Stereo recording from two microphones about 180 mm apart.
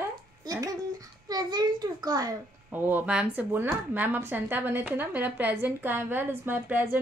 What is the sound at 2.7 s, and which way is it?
Speech, 10° right (ahead or behind).